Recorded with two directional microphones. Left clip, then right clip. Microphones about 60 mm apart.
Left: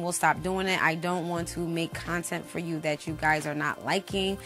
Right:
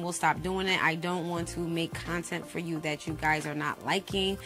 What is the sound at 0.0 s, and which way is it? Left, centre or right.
A woman's voice, left.